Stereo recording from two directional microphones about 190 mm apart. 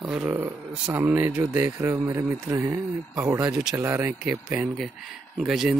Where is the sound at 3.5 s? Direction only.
5° right (ahead or behind).